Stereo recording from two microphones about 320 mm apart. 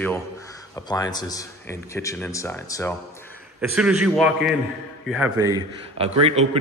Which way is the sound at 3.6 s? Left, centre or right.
Centre.